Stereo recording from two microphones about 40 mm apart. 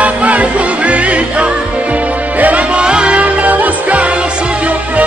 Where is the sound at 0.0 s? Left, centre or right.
Right.